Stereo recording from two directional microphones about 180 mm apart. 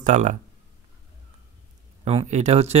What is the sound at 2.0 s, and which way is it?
Speech, 35° right (ahead or behind).